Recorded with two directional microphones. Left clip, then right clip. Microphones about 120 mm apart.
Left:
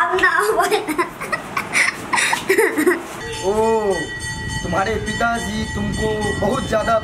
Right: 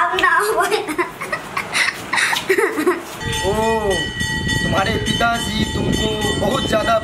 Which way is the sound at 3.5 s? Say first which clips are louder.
Left 2 dB; 5° right (ahead or behind).